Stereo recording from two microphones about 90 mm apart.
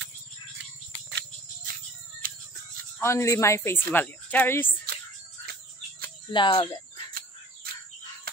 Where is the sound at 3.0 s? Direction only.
35° left (ahead or behind).